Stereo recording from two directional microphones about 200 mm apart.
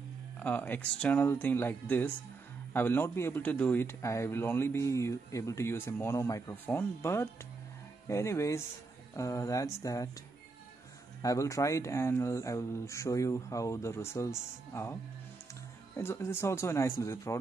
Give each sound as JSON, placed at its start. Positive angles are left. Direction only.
{"t": 0.4, "sound": "a man's voice", "side_deg": 10}
{"t": 11.2, "sound": "a man's voice", "side_deg": 15}
{"t": 16.0, "sound": "a man's voice", "side_deg": 10}